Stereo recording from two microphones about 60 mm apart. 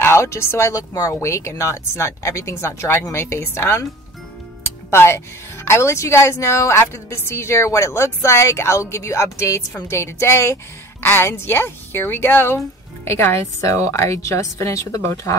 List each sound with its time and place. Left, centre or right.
0.0 s speech: left
0.7 s a woman's voice: left
4.6 s music: left
5.7 s a woman's voice: left
13.4 s speech: left
13.9 s speech: left